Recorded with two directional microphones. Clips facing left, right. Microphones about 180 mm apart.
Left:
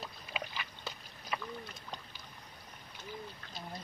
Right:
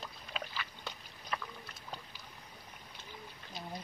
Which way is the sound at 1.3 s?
5° left (ahead or behind).